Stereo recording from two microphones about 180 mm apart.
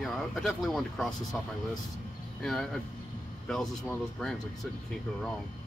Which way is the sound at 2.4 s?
Centre (ahead or behind).